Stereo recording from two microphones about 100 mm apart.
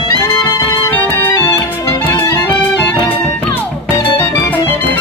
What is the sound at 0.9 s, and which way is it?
Music, 20° left (ahead or behind).